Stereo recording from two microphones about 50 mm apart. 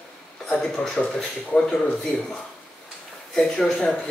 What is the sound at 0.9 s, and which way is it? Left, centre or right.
Speech, centre.